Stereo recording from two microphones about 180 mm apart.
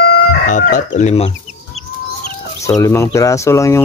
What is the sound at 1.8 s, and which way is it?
Chicken, centre (ahead or behind).